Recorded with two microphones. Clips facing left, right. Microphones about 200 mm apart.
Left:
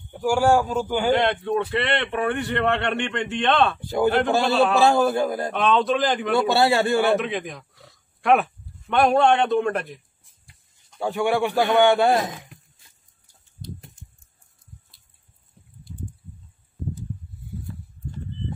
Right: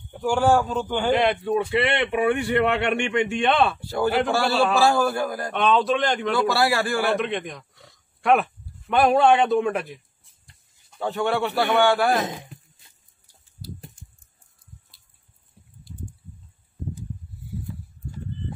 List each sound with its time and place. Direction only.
0.1 s a man's voice: 5° left (ahead or behind)
1.1 s speech: 5° right (ahead or behind)
3.8 s a man's voice: 15° left (ahead or behind)
5.5 s a man's voice: centre (ahead or behind)
6.3 s a man's voice: 25° left (ahead or behind)
7.2 s speech: centre (ahead or behind)
11.0 s a man's voice: 10° left (ahead or behind)
12.3 s speech: 20° right (ahead or behind)
15.6 s a sound: 5° right (ahead or behind)